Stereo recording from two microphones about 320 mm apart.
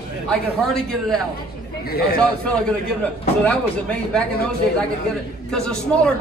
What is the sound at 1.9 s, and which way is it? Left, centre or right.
Speech, left.